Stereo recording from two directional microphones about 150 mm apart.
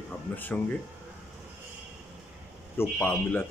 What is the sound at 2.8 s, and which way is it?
Speech, 10° left (ahead or behind).